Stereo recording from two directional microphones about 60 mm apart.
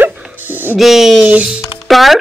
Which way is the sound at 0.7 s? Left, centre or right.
Centre.